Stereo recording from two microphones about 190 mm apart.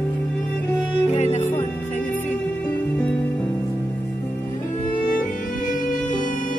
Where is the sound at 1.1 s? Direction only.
35° left (ahead or behind).